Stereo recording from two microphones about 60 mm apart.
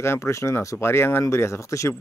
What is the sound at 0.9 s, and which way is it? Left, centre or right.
Speech, left.